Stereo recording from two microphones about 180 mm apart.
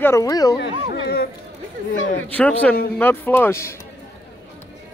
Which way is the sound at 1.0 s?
60° left (ahead or behind).